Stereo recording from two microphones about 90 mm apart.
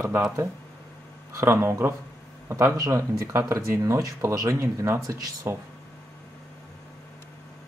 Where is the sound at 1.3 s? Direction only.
30° right (ahead or behind).